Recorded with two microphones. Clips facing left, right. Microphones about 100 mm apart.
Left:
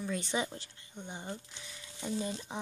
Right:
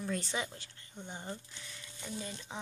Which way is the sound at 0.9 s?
5° left (ahead or behind).